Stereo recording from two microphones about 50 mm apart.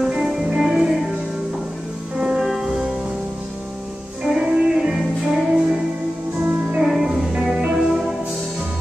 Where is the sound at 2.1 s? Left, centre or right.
Centre.